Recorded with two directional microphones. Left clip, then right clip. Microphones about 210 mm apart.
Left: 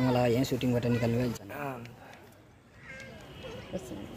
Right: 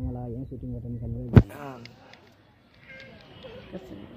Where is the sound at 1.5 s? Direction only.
Centre (ahead or behind).